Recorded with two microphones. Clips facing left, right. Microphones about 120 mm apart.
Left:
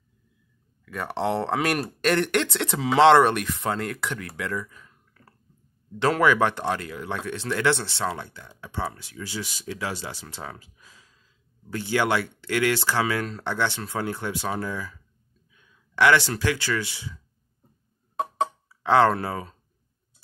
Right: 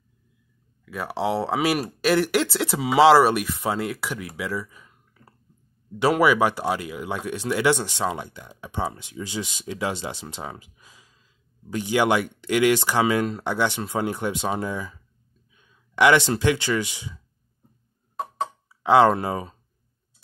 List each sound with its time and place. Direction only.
0.8 s speech: 5° right (ahead or behind); by 17.1 s 20° right (ahead or behind)
18.7 s speech: 15° right (ahead or behind)